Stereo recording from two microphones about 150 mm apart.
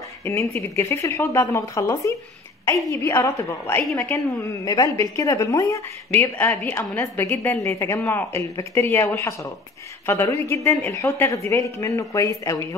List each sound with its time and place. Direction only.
0.2 s a woman's voice: 20° left (ahead or behind)